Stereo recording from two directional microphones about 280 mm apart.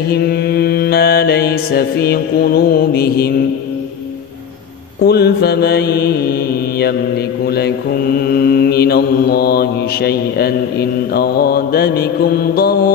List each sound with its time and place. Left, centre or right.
0.1 s mantra: left
5.0 s mantra: left
7.4 s mantra: left